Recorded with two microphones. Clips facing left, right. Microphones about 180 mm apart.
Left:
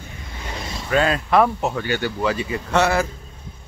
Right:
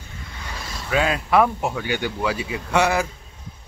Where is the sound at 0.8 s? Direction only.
5° right (ahead or behind).